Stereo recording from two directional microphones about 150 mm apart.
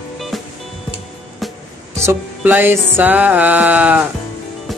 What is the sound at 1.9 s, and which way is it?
Music, 15° right (ahead or behind).